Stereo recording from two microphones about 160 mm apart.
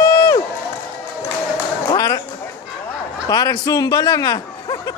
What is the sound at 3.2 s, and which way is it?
A man's voice, 25° left (ahead or behind).